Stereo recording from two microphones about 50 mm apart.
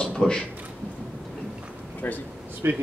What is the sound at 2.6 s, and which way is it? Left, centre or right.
Speech, right.